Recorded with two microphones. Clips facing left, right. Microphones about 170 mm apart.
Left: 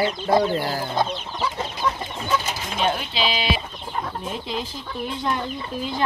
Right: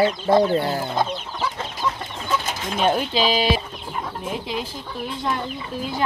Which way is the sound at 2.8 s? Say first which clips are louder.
Right 4 dB; 40° right (ahead or behind).